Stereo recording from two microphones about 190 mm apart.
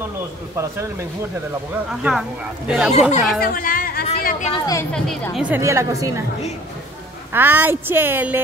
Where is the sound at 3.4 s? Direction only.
50° left (ahead or behind).